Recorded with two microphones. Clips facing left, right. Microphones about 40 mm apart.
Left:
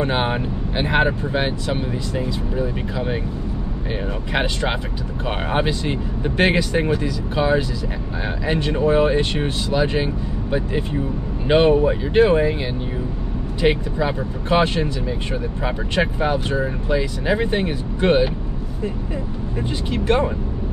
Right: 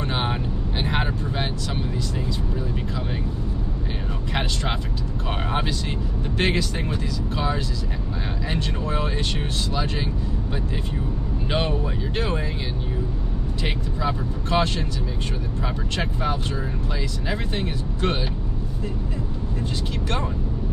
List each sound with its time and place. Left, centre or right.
0.0 s speech: left
4.3 s speech: centre
13.6 s speech: left
19.9 s speech: left